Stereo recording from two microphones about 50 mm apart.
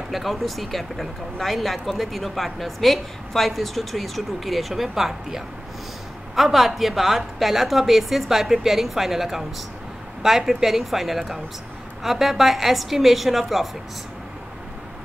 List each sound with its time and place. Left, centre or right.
0.1 s speech: centre